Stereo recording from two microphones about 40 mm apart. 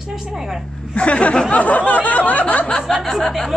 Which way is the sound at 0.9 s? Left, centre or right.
Left.